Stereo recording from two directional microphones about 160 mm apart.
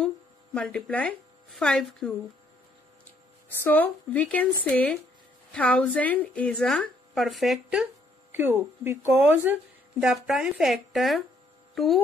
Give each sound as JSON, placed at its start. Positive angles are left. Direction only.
{"t": 0.6, "sound": "speech", "side_deg": 5}
{"t": 3.4, "sound": "speech", "side_deg": 10}
{"t": 8.3, "sound": "speech", "side_deg": -15}